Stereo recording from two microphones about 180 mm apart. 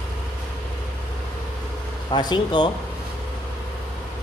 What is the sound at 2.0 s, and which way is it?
Speech, 25° left (ahead or behind).